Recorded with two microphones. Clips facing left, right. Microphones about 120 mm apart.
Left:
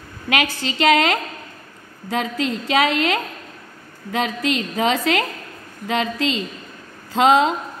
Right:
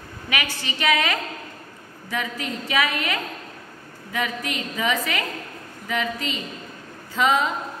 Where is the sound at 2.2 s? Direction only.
90° left.